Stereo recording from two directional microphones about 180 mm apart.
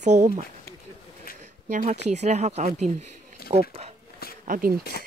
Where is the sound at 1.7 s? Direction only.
40° right (ahead or behind).